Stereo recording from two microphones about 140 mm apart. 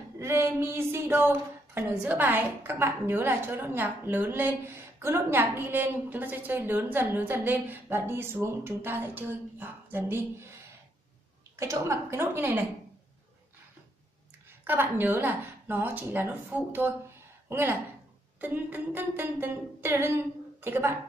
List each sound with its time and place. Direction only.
0.2 s a woman's voice: 20° right (ahead or behind)
11.5 s a woman's voice: 20° right (ahead or behind)
14.6 s a woman's voice: 15° right (ahead or behind)